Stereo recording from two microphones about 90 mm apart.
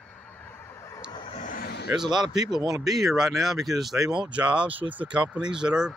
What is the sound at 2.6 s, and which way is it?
Speech, 40° right (ahead or behind).